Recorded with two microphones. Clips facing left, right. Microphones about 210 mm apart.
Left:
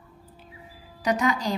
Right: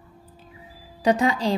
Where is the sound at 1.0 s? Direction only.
30° right (ahead or behind).